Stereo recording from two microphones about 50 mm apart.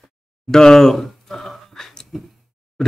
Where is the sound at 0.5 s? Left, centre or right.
Centre.